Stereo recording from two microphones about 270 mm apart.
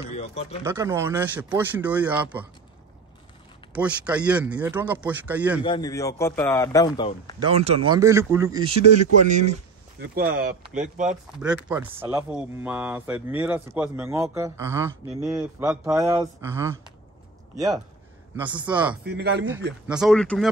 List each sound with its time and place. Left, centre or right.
0.0 s speech: left
0.7 s speech: centre
3.7 s speech: centre
5.6 s a man's voice: centre
7.3 s speech: right
8.9 s speech: right
9.9 s speech: right
11.3 s speech: centre
18.3 s speech: centre
19.0 s speech: right
19.9 s speech: centre